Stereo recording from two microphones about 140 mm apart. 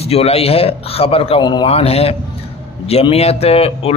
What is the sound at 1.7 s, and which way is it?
A man's voice, 45° left (ahead or behind).